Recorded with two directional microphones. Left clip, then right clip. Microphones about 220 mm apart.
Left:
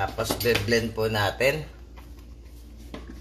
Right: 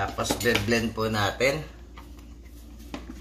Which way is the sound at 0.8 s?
10° right (ahead or behind).